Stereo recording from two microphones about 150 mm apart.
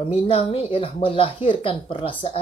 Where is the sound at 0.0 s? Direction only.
40° left (ahead or behind).